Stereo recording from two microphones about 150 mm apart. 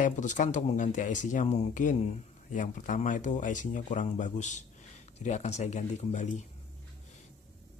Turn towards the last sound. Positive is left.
turn(degrees=55)  # may be behind; listen again after turning